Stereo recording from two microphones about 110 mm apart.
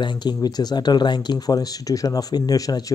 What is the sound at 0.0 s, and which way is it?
Speech, 40° left (ahead or behind).